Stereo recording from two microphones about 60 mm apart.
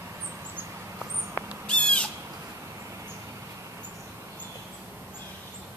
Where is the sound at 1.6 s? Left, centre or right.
Centre.